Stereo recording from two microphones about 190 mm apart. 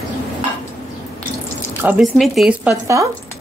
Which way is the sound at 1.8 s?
5° right (ahead or behind).